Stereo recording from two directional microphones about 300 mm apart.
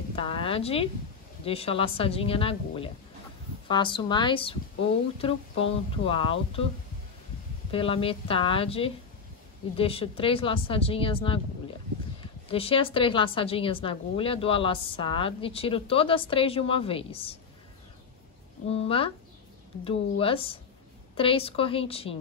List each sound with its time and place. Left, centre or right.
0.1 s a sound: centre
1.4 s a woman's voice: centre
5.6 s a woman's voice: centre
7.7 s a woman's voice: centre
12.4 s a woman's voice: centre
18.7 s a woman's voice: centre